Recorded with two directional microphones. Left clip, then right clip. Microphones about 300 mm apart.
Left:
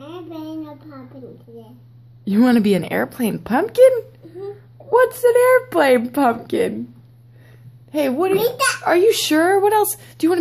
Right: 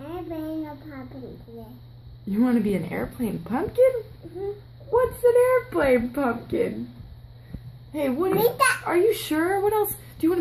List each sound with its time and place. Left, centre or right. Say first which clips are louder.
2.2 s a child's voice: left 8 dB; left
7.9 s a child's voice: left 6 dB; left